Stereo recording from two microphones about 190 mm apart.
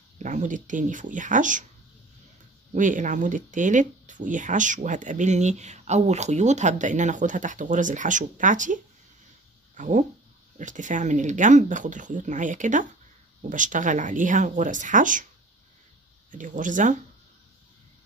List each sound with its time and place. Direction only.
0.2 s speech: 40° right (ahead or behind)
2.7 s speech: 45° right (ahead or behind)
9.8 s speech: 40° right (ahead or behind)
16.3 s speech: 45° right (ahead or behind)